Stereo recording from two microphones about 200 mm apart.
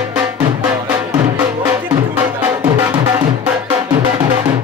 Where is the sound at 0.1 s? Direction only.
5° right (ahead or behind).